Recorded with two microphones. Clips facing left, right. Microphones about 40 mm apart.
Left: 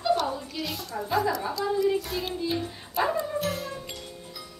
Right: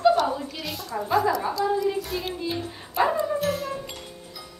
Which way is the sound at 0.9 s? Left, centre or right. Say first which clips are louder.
Right 4 dB; right.